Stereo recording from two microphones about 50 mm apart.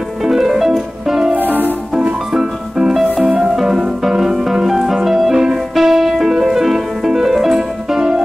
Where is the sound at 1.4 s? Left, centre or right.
Right.